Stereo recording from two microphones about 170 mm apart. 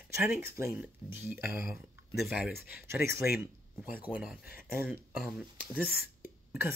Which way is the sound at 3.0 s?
65° left (ahead or behind).